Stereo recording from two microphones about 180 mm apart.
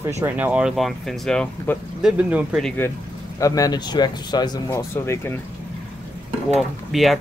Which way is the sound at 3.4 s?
20° left (ahead or behind).